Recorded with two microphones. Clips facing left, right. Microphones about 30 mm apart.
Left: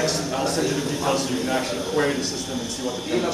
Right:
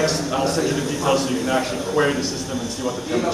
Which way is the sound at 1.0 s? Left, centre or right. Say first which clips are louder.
Right 5 dB; right.